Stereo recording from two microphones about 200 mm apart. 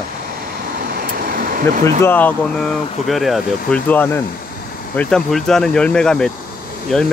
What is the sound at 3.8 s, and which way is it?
Speech, 10° left (ahead or behind).